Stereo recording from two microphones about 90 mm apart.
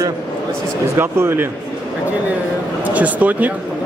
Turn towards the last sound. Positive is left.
turn(degrees=-15)  # may be behind; listen again after turning